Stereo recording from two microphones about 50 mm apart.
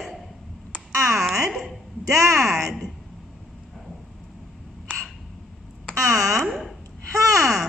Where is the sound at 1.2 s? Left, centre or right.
Centre.